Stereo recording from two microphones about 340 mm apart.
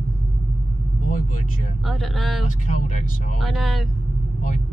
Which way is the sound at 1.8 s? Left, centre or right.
Centre.